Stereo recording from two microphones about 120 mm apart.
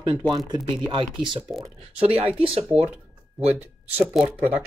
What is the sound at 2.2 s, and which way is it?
Speech, 10° right (ahead or behind).